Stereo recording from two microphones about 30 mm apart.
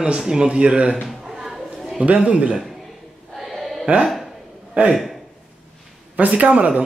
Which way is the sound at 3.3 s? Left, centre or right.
Centre.